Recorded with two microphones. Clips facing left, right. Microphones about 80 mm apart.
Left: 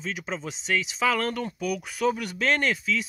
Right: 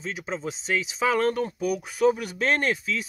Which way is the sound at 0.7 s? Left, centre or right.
Right.